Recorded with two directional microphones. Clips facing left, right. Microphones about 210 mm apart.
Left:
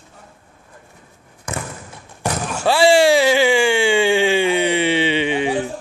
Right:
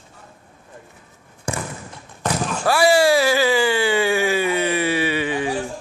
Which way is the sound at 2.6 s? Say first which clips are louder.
Left 3 dB; 30° left (ahead or behind).